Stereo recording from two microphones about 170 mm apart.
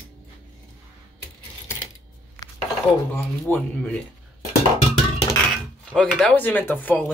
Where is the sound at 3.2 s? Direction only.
10° left (ahead or behind).